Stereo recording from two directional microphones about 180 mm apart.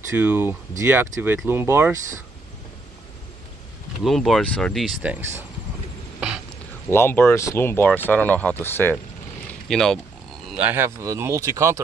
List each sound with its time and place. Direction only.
0.1 s speech: 10° right (ahead or behind)
4.0 s speech: centre (ahead or behind)
6.9 s speech: 15° left (ahead or behind)
9.5 s boat: 5° left (ahead or behind)
10.5 s speech: 10° right (ahead or behind)